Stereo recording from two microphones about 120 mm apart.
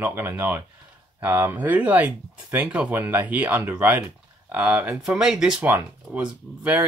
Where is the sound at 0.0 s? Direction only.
20° right (ahead or behind).